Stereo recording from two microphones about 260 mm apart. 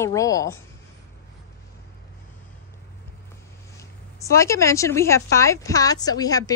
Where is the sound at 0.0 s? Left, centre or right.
Centre.